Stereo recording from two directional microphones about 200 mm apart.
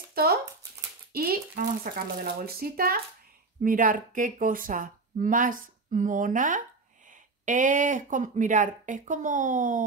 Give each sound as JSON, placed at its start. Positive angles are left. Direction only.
{"t": 0.1, "sound": "speech", "side_deg": -50}